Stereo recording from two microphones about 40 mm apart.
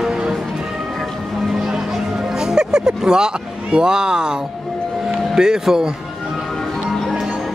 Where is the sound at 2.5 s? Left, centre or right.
Centre.